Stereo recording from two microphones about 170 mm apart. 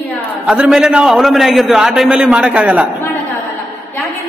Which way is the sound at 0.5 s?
5° right (ahead or behind).